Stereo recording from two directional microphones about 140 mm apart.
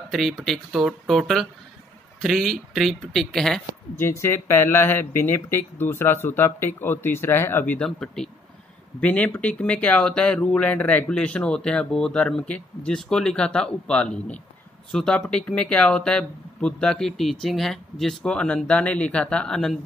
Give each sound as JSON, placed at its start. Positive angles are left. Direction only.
{"t": 0.1, "sound": "speech", "side_deg": 0}
{"t": 4.0, "sound": "speech", "side_deg": 20}